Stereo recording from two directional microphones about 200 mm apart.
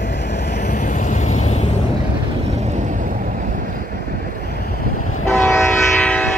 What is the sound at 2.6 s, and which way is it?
Vehicle, 35° right (ahead or behind).